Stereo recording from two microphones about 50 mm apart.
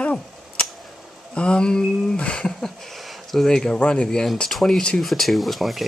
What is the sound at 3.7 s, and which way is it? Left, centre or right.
Speech, left.